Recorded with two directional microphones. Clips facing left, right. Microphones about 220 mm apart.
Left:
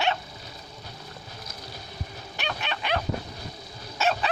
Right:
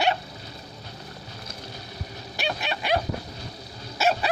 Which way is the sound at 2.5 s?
10° right (ahead or behind).